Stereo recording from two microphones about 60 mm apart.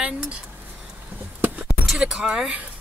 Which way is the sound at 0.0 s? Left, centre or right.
Centre.